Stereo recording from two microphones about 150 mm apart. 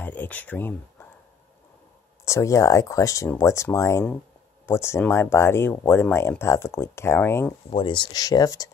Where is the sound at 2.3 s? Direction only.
20° left (ahead or behind).